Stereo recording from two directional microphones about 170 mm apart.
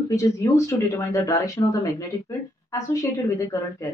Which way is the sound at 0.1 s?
20° left (ahead or behind).